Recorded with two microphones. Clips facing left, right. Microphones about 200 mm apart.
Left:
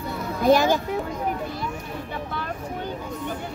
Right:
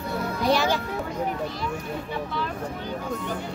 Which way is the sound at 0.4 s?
50° left (ahead or behind).